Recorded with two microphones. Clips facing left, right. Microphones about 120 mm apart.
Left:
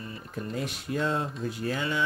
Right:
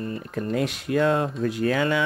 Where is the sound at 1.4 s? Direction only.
90° right.